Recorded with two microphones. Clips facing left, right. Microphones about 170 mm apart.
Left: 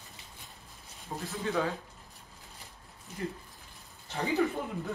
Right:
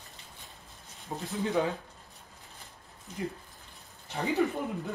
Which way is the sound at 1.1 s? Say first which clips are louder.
Right 1 dB; 20° right (ahead or behind).